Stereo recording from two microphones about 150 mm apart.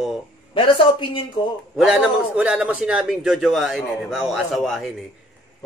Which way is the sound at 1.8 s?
5° right (ahead or behind).